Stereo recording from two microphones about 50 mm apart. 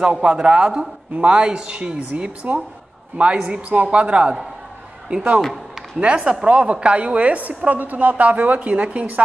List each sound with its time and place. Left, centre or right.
0.0 s a woman's voice: right